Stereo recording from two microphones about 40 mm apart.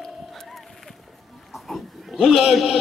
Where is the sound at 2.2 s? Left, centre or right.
Centre.